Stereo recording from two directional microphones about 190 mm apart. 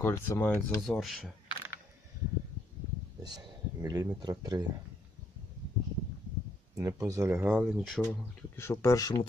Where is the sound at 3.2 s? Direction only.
20° right (ahead or behind).